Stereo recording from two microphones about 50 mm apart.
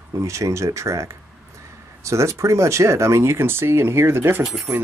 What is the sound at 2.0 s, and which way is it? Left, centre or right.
Speech, right.